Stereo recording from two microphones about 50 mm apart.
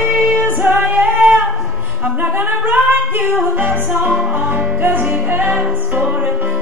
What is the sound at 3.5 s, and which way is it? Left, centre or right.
Music, right.